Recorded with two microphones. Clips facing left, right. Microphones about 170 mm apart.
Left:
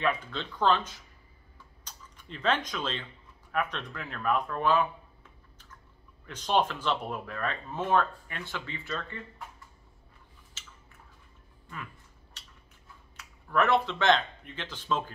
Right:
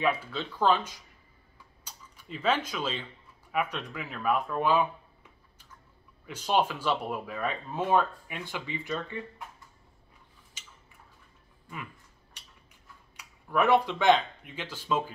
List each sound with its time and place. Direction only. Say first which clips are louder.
0.0 s speech: right 1 dB; 5° right (ahead or behind)
6.2 s speech: even; 10° right (ahead or behind)
13.1 s speech: even; 10° right (ahead or behind)